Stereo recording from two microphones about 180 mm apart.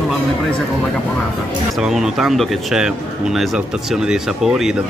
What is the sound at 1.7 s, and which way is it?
Speech, centre (ahead or behind).